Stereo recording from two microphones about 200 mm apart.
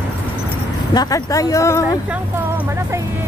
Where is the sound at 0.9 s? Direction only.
20° left (ahead or behind).